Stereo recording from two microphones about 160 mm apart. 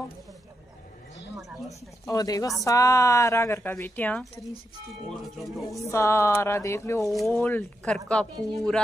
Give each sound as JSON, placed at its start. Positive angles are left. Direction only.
{"t": 1.7, "sound": "speech", "side_deg": 20}
{"t": 3.7, "sound": "a sound", "side_deg": 10}
{"t": 5.2, "sound": "speech", "side_deg": 0}
{"t": 5.8, "sound": "a sound", "side_deg": 20}
{"t": 7.0, "sound": "speech", "side_deg": 0}
{"t": 7.3, "sound": "speech", "side_deg": 10}